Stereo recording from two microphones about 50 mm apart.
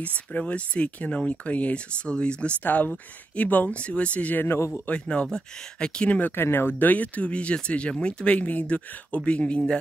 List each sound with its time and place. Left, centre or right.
0.0 s speech: left
2.6 s speech: left
4.6 s speech: left
5.0 s speech: centre
6.3 s speech: left